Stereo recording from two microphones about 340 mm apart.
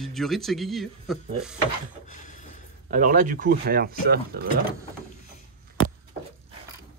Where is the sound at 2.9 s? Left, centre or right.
Right.